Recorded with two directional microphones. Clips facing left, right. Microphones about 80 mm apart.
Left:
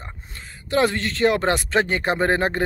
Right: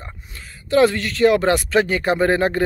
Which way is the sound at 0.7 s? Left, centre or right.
Left.